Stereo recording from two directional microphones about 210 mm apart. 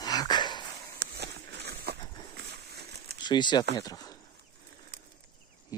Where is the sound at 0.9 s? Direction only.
50° right (ahead or behind).